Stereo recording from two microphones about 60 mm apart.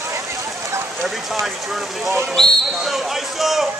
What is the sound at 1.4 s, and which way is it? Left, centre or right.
Speech, centre.